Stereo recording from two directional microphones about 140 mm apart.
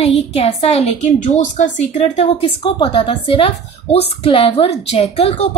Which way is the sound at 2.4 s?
40° left (ahead or behind).